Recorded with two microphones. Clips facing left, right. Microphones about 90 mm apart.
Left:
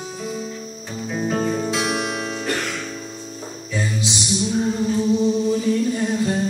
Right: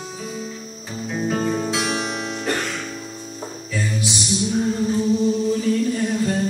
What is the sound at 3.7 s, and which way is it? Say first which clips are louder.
Music: left 1 dB; 20° left (ahead or behind).